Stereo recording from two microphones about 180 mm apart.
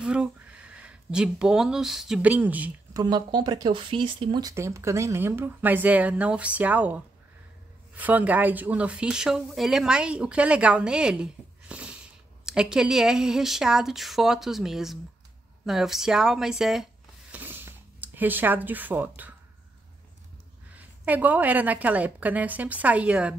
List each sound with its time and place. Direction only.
0.0 s speech: 5° right (ahead or behind)
2.9 s speech: 20° right (ahead or behind); by 16.8 s centre (ahead or behind)
17.3 s a sound: 10° right (ahead or behind)
20.7 s speech: 10° right (ahead or behind)